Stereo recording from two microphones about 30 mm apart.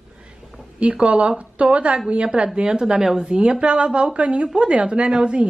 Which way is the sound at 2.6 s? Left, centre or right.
Right.